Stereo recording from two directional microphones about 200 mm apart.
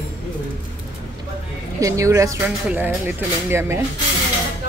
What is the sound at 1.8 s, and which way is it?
A woman's voice, 15° right (ahead or behind).